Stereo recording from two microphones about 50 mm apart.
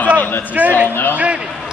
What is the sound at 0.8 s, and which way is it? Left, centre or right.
Speech, left.